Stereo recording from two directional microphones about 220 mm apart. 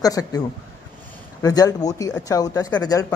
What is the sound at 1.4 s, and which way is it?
Speech, 15° left (ahead or behind).